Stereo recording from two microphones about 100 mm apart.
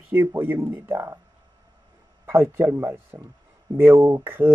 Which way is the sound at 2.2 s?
25° right (ahead or behind).